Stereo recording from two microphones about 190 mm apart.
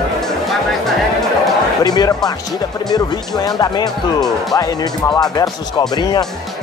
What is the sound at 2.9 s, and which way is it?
Speech, 20° left (ahead or behind).